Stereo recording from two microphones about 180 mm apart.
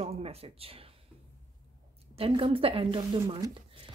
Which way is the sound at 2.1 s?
30° right (ahead or behind).